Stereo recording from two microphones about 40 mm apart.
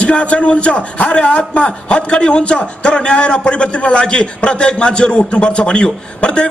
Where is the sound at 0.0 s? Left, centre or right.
Left.